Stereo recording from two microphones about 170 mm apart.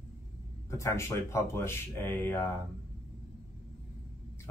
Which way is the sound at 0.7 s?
15° left (ahead or behind).